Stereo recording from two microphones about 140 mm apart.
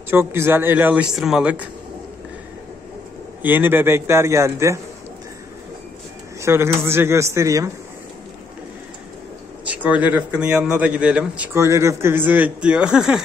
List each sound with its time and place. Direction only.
0.1 s a man's voice: 15° right (ahead or behind)
3.4 s a man's voice: 15° right (ahead or behind)
6.4 s a man's voice: 20° right (ahead or behind)
9.7 s a man's voice: 10° right (ahead or behind)
11.5 s a man's voice: 20° right (ahead or behind); by 13.2 s 5° right (ahead or behind)